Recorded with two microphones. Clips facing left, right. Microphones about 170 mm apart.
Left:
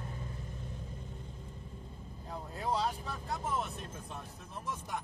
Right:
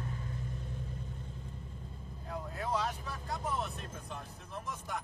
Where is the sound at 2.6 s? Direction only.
30° left (ahead or behind).